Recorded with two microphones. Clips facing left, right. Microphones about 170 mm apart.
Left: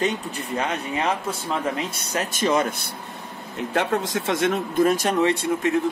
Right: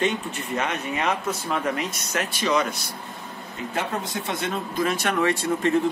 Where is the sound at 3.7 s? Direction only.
80° left.